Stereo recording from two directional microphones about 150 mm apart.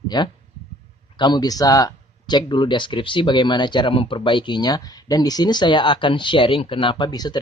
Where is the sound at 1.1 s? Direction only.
30° left (ahead or behind).